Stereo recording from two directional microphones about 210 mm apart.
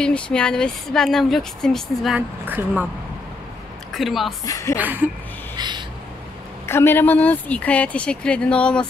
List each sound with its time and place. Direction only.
0.0 s a woman's voice: 5° left (ahead or behind)
3.9 s a woman's voice: centre (ahead or behind)
4.5 s a woman's voice: 15° left (ahead or behind)
4.7 s speech: 10° right (ahead or behind)
5.6 s owl: 20° right (ahead or behind)
6.6 s a woman's voice: 10° left (ahead or behind)